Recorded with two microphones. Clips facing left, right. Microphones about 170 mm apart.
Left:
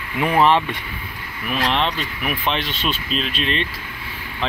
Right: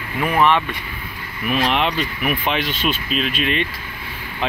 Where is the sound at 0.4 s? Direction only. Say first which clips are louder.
Left 1 dB; 30° left (ahead or behind).